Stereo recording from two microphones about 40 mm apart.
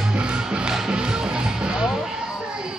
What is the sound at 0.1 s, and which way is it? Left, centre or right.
Music, right.